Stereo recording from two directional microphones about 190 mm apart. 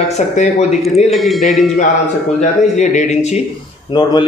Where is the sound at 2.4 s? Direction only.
40° left (ahead or behind).